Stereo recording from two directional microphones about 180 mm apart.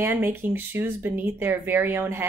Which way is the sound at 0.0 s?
15° right (ahead or behind).